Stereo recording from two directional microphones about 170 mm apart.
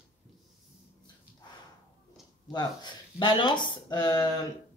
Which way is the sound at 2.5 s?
25° left (ahead or behind).